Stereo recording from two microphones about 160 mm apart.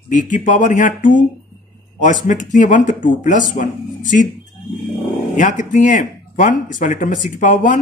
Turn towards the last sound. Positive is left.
turn(degrees=50)  # may be behind; listen again after turning